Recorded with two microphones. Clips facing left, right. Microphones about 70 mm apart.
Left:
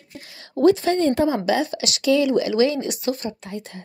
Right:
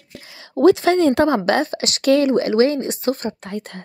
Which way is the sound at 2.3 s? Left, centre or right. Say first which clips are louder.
Right 3 dB; right.